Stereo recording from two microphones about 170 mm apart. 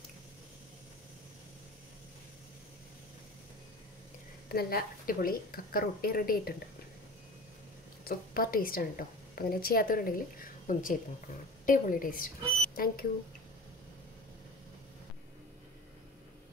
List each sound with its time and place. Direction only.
4.5 s a woman's voice: 60° left (ahead or behind)
8.0 s a woman's voice: 60° left (ahead or behind)